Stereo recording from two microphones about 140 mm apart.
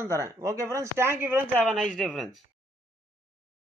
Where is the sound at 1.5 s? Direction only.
5° left (ahead or behind).